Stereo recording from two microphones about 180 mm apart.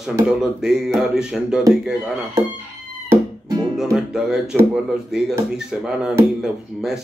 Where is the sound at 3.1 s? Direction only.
20° right (ahead or behind).